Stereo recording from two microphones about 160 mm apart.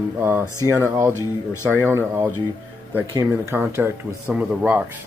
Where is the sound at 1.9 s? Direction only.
15° right (ahead or behind).